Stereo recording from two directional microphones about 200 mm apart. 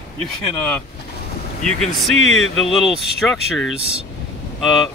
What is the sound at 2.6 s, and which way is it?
Speech, centre (ahead or behind).